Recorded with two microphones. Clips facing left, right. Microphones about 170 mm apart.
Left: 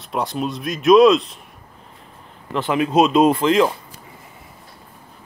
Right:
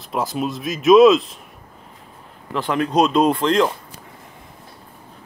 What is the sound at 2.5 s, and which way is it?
Speech, 5° left (ahead or behind).